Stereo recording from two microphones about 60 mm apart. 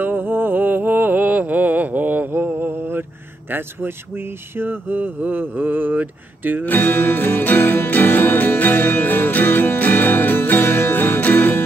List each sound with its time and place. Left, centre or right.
0.0 s mantra: right
2.3 s speech: right
6.6 s music: left